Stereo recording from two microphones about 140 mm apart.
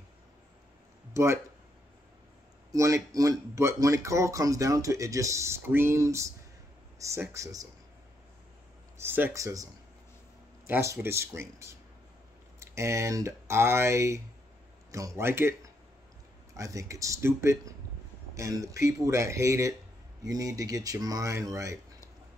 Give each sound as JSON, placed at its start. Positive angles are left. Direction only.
{"t": 1.1, "sound": "speech", "side_deg": -20}
{"t": 2.7, "sound": "speech", "side_deg": -25}
{"t": 8.9, "sound": "speech", "side_deg": -15}
{"t": 10.7, "sound": "speech", "side_deg": -15}
{"t": 16.5, "sound": "speech", "side_deg": -20}